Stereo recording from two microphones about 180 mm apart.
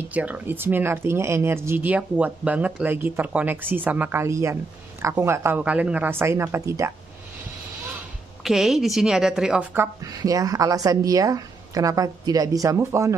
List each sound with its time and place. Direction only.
0.1 s speech: 10° right (ahead or behind)
8.5 s a woman's voice: centre (ahead or behind)
10.0 s speech: 20° right (ahead or behind)